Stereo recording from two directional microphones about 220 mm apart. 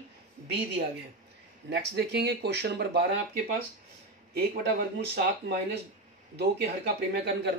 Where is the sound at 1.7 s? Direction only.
50° right (ahead or behind).